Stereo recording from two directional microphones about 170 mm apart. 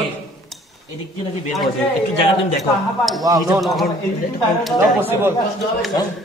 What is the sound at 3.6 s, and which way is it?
Speech, centre (ahead or behind).